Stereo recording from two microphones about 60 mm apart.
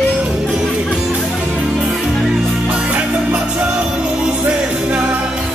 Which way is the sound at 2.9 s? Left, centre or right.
Right.